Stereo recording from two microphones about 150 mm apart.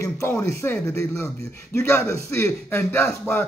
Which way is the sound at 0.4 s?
20° left (ahead or behind).